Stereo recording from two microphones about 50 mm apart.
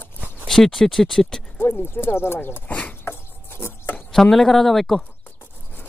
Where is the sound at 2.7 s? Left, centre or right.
Left.